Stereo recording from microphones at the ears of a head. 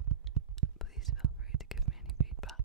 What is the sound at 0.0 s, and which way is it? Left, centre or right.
Whispering, right.